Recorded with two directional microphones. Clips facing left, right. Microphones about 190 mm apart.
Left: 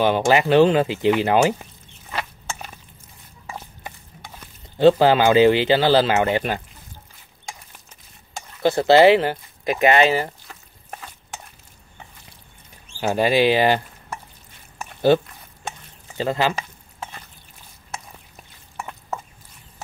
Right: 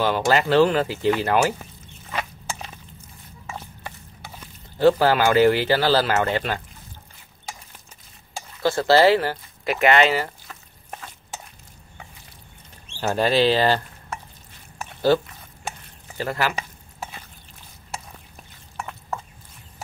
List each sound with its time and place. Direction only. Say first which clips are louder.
0.0 s speech: left 3 dB; 15° left (ahead or behind)
1.6 s a sound: right 2 dB; 5° left (ahead or behind)
4.7 s speech: left 3 dB; 20° left (ahead or behind)
8.6 s speech: left 3 dB; 20° left (ahead or behind)
13.0 s speech: left 1 dB; 15° left (ahead or behind)
16.2 s speech: left 4 dB; 20° left (ahead or behind)
18.3 s a sound: even; 5° left (ahead or behind)